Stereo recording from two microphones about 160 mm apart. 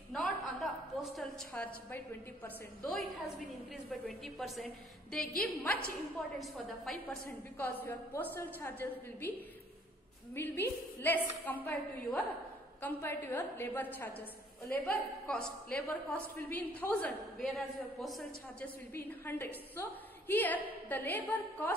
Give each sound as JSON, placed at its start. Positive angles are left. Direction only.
{"t": 0.1, "sound": "chuckle", "side_deg": 0}
{"t": 1.1, "sound": "a woman's voice", "side_deg": 5}
{"t": 10.3, "sound": "a woman's voice", "side_deg": 15}
{"t": 18.9, "sound": "a woman's voice", "side_deg": 15}